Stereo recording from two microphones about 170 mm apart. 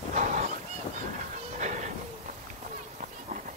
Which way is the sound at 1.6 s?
45° right (ahead or behind).